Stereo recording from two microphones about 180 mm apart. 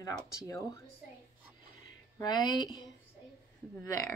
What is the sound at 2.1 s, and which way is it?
Speech, 25° left (ahead or behind).